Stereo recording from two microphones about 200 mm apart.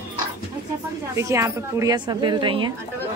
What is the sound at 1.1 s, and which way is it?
A woman's voice, 15° right (ahead or behind).